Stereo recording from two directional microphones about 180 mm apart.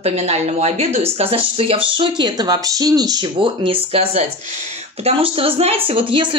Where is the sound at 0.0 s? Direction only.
35° right (ahead or behind).